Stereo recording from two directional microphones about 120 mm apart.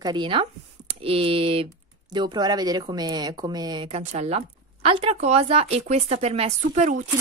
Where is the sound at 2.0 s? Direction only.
35° right (ahead or behind).